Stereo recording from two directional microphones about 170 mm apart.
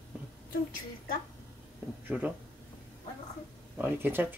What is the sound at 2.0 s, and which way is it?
Speech, 10° right (ahead or behind).